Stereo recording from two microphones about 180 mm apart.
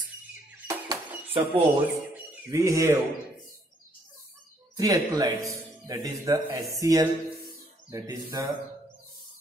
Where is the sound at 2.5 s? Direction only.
15° right (ahead or behind).